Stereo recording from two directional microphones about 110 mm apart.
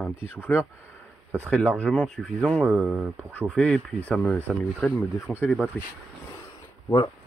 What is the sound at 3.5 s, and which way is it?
Speech, 5° left (ahead or behind).